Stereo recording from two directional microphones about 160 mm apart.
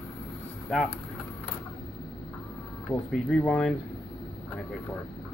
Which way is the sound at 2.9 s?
5° left (ahead or behind).